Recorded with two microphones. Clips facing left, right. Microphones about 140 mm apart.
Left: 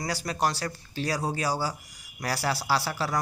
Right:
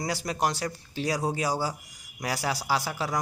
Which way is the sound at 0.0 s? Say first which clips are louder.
Even; 20° right (ahead or behind).